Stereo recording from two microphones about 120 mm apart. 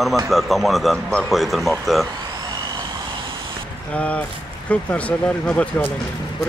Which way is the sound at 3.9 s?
10° left (ahead or behind).